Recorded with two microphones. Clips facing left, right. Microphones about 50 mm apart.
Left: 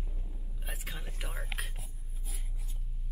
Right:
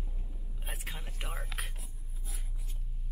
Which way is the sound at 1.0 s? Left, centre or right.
Centre.